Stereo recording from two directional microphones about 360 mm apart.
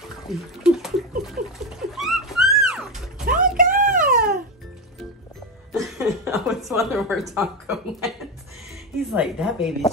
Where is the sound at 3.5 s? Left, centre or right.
Right.